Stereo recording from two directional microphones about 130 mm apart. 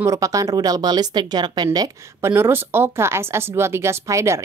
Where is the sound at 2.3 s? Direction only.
15° right (ahead or behind).